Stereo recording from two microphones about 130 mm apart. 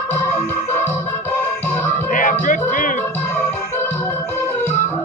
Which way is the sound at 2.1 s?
90° left.